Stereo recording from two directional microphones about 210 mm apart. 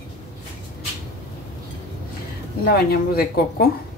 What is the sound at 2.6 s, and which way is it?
Speech, 45° left (ahead or behind).